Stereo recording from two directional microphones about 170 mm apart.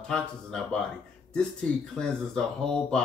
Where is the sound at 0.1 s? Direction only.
5° left (ahead or behind).